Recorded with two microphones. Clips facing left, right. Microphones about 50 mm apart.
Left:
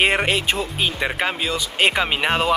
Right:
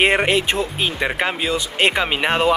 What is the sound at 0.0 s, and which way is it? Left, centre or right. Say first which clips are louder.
Speech: right 2 dB; centre.